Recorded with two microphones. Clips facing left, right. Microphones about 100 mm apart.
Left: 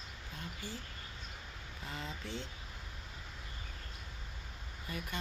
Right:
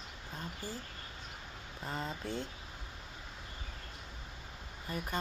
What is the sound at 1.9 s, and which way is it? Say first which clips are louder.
Speech: right 5 dB; 40° right (ahead or behind).